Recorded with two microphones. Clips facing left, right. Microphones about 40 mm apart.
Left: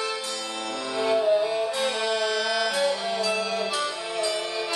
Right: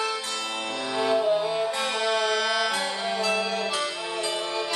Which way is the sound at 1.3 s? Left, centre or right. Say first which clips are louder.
Left 1 dB; centre.